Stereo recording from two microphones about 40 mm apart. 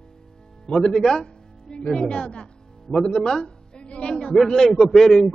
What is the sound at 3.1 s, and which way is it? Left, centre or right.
Speech, centre.